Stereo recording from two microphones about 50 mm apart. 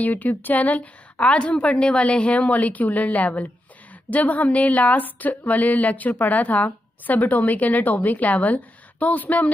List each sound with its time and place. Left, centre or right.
0.0 s a woman's voice: left